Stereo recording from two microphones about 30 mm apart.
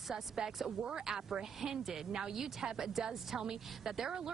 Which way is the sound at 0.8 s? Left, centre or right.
Right.